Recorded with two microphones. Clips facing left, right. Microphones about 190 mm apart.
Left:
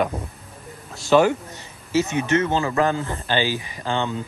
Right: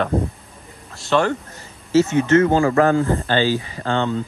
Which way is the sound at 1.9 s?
15° left (ahead or behind).